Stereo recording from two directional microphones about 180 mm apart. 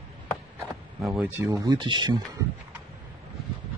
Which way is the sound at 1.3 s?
15° right (ahead or behind).